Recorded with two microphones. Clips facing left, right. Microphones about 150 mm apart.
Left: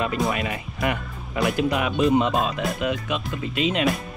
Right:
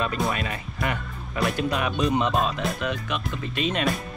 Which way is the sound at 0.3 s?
20° left (ahead or behind).